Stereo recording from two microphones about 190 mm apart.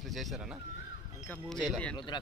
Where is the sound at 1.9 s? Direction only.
25° left (ahead or behind).